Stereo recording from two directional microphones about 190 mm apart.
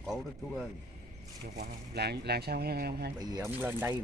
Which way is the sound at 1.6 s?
55° right (ahead or behind).